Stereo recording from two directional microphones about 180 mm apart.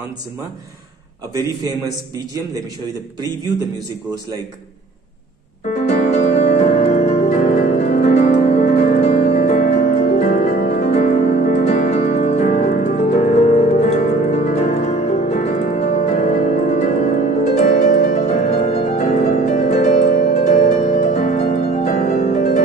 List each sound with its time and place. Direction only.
1.3 s a man's voice: 20° right (ahead or behind)
5.7 s music: 45° left (ahead or behind)